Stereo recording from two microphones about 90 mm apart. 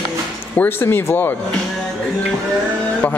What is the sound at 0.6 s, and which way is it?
Speech, 25° left (ahead or behind).